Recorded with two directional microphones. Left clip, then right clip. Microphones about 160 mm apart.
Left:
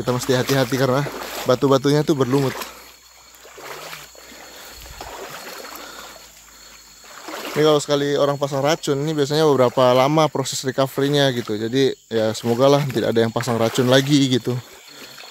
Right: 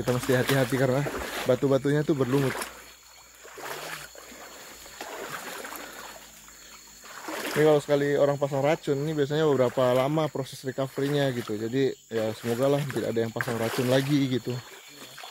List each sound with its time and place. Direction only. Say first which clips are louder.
0.0 s speech: left 5 dB; 50° left (ahead or behind)
5.4 s a sound: left 3 dB; 30° left (ahead or behind)
7.2 s rowboat: left 4 dB; 10° left (ahead or behind)
7.6 s speech: left 5 dB; 45° left (ahead or behind)